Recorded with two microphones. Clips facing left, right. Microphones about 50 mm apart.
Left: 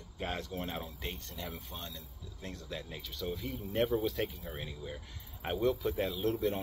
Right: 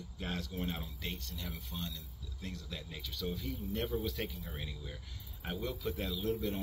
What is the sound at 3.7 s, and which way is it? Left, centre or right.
Speech, left.